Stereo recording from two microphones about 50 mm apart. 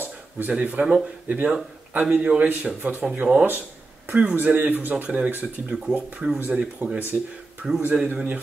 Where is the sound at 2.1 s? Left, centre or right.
Right.